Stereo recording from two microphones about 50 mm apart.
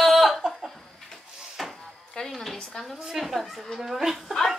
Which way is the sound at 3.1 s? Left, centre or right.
Centre.